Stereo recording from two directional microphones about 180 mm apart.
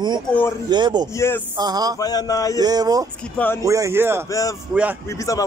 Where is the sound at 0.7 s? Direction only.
25° right (ahead or behind).